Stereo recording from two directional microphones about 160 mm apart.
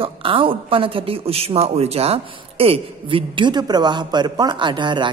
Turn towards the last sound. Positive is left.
turn(degrees=-30)  # may be behind; listen again after turning